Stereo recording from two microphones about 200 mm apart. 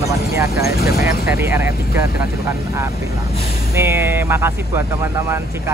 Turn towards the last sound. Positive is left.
turn(degrees=-10)  # may be behind; listen again after turning